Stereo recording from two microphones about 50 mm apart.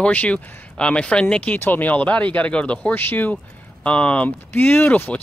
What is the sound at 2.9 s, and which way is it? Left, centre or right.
Speech, left.